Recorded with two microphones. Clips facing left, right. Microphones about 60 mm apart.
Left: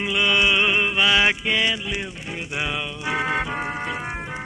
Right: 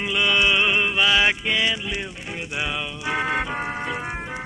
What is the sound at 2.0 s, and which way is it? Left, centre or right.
Music, centre.